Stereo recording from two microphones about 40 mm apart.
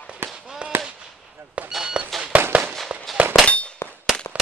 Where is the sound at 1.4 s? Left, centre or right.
Right.